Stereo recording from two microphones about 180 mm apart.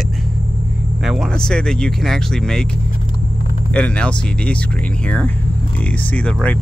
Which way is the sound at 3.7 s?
5° left (ahead or behind).